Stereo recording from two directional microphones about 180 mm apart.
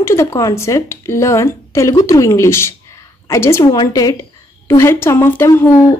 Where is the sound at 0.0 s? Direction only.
15° left (ahead or behind).